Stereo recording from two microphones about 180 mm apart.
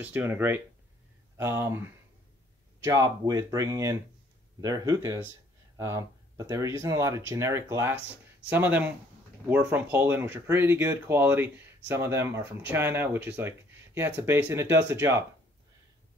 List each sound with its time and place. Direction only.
0.0 s speech: 10° right (ahead or behind)